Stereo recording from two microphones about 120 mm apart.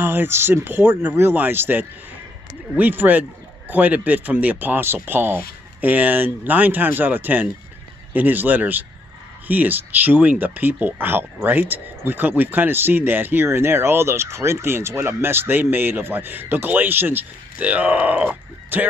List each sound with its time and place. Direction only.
0.0 s speech: 20° right (ahead or behind)